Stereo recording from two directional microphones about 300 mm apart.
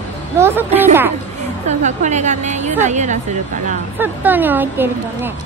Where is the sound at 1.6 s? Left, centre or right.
Right.